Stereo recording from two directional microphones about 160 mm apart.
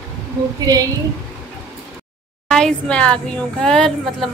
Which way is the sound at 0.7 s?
20° right (ahead or behind).